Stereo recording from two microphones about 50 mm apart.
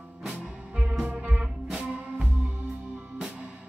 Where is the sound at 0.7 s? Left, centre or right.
Centre.